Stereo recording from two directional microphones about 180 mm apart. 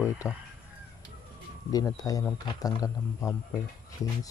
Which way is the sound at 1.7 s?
20° left (ahead or behind).